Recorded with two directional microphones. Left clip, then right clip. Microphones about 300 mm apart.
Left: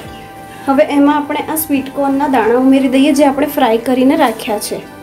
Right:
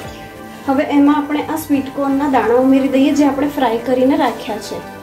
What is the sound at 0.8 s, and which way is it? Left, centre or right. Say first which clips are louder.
A woman's voice: left 2 dB; left.